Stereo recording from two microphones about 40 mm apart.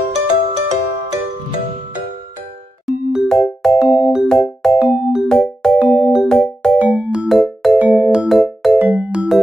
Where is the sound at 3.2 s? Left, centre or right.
Centre.